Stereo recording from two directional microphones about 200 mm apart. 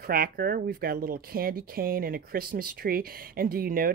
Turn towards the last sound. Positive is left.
turn(degrees=-45)  # may be behind; listen again after turning